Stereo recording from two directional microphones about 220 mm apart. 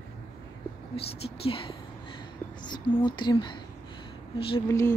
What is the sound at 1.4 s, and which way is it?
Speech, 25° left (ahead or behind).